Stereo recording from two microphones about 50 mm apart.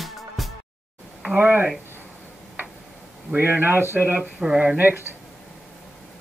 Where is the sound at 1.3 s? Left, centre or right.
Right.